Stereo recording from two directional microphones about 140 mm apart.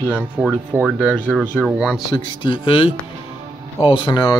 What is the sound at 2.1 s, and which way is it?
Speech, 35° left (ahead or behind).